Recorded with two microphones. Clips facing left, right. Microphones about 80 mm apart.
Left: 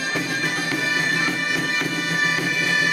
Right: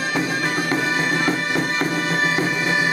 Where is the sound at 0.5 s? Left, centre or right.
Right.